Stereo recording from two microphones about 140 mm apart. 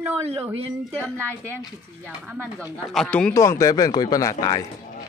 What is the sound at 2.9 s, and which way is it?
Speech, 5° left (ahead or behind).